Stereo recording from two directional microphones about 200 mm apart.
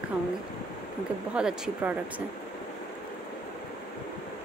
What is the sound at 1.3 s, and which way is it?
Speech, 5° right (ahead or behind).